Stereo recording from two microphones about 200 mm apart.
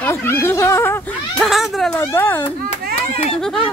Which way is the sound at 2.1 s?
15° left (ahead or behind).